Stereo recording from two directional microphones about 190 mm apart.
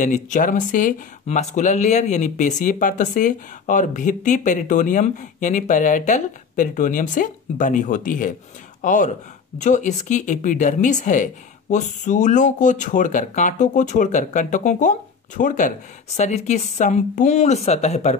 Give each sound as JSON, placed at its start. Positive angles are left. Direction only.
{"t": 0.0, "sound": "speech", "side_deg": 40}